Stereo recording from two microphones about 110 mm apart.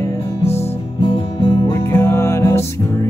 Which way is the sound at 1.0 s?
50° left (ahead or behind).